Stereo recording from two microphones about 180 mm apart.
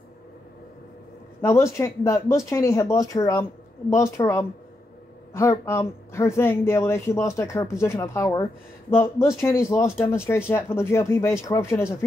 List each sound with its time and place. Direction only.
1.4 s speech: 15° left (ahead or behind)